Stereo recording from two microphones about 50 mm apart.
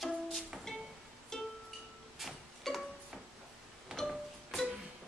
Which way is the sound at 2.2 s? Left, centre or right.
Centre.